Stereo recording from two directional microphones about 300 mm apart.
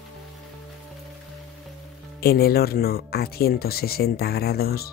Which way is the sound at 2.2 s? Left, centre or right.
Left.